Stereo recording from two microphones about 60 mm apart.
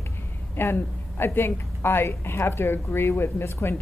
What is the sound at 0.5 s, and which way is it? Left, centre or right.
A woman's voice, left.